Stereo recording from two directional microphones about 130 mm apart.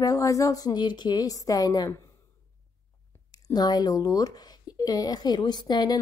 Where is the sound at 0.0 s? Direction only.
25° left (ahead or behind).